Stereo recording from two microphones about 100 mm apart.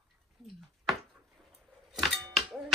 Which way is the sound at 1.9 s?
Centre (ahead or behind).